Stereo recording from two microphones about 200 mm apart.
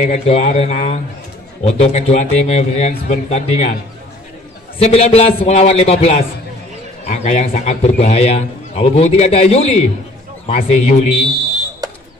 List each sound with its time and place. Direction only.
0.0 s a man's voice: 35° left (ahead or behind)
4.7 s a man's voice: 30° left (ahead or behind)